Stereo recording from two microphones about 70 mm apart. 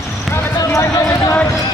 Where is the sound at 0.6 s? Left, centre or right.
Left.